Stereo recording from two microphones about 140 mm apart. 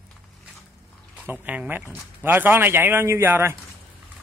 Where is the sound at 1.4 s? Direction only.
10° right (ahead or behind).